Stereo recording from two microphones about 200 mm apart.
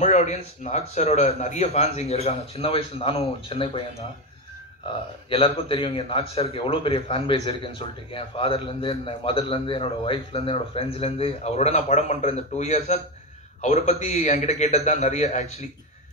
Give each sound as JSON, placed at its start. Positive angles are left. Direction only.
{"t": 0.0, "sound": "a man's voice", "side_deg": 35}
{"t": 5.3, "sound": "a man's voice", "side_deg": 25}